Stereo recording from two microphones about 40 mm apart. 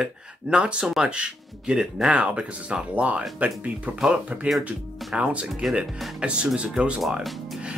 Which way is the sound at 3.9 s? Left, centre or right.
Right.